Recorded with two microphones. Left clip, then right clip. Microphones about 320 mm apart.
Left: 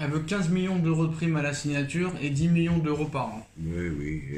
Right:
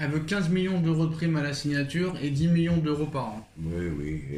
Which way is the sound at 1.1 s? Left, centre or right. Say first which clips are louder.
Left 1 dB; left.